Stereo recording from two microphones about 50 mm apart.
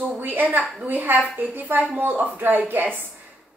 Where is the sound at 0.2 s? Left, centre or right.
Right.